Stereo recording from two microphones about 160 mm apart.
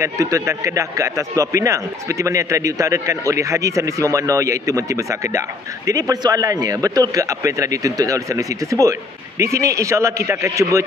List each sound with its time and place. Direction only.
0.0 s speech: 20° right (ahead or behind)